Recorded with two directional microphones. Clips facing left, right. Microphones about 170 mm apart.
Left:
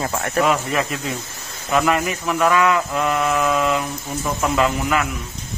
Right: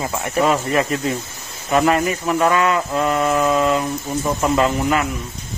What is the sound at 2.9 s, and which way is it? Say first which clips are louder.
Speech: right 2 dB; 25° right (ahead or behind).